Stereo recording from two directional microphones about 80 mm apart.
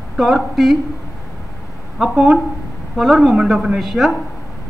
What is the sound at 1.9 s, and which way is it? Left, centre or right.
Speech, centre.